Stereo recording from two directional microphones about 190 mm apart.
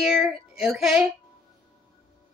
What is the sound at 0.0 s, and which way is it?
Child singing, centre (ahead or behind).